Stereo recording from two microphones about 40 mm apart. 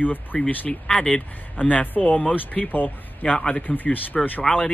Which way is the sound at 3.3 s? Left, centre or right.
Left.